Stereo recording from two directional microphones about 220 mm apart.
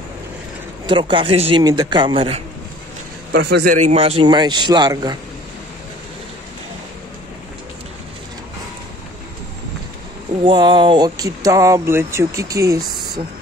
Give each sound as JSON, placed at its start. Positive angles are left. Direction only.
{"t": 0.8, "sound": "a man's voice", "side_deg": -20}
{"t": 3.3, "sound": "a man's voice", "side_deg": -50}
{"t": 3.7, "sound": "a man's voice", "side_deg": -30}
{"t": 10.4, "sound": "speech", "side_deg": -20}